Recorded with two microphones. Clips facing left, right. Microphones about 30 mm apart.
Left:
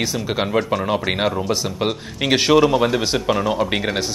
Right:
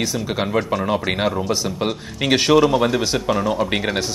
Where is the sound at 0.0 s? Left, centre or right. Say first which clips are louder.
Left 1 dB; centre.